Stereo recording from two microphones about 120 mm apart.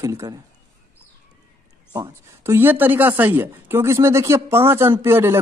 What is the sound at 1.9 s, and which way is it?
Speech, 25° right (ahead or behind).